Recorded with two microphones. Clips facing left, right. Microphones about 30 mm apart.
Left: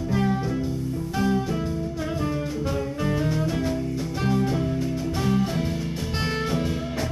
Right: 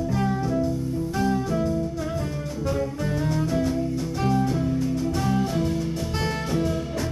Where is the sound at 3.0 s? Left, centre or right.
Centre.